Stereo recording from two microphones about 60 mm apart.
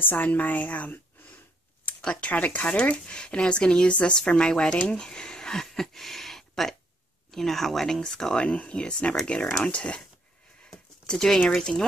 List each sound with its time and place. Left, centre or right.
0.0 s a woman's voice: left
10.7 s speech: centre